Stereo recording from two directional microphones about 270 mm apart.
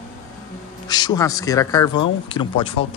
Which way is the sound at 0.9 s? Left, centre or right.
Centre.